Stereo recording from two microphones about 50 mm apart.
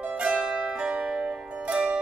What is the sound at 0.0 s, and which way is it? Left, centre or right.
Music, right.